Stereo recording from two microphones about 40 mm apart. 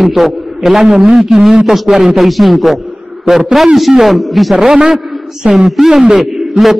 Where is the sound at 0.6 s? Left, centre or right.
Centre.